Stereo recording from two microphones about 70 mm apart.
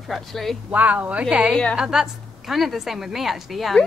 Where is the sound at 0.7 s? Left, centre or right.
Right.